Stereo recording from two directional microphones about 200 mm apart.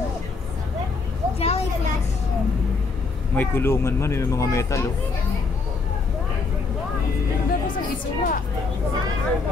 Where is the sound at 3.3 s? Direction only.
10° left (ahead or behind).